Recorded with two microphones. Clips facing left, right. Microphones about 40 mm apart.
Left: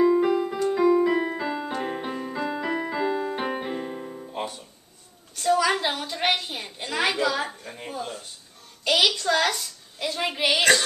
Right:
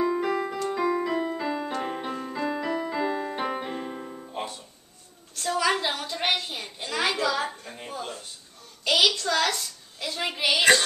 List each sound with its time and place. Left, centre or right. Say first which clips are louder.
0.0 s keyboard: left 5 dB; centre
0.7 s keyboard: left 8 dB; centre
1.1 s keyboard: left 2 dB; centre
3.0 s keyboard: left 2 dB; centre
4.4 s music: left 2 dB; centre
5.3 s a sound: left 3 dB; centre
9.2 s a sound: left 2 dB; centre